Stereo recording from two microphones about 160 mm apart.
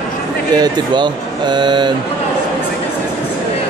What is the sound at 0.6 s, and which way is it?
Speech, 30° right (ahead or behind).